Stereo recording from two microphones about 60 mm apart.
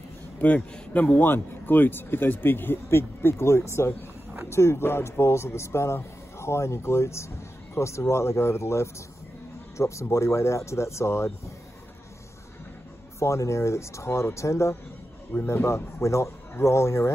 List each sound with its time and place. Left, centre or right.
0.9 s speech: left
13.2 s speech: left